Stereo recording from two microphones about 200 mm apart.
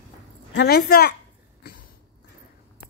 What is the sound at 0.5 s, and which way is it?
Speech, 50° left (ahead or behind).